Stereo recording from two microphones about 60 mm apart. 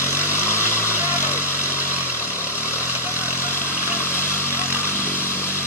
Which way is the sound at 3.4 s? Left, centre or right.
Left.